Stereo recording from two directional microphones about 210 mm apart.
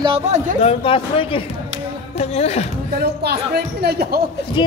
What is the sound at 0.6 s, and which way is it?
A man's voice, 25° left (ahead or behind).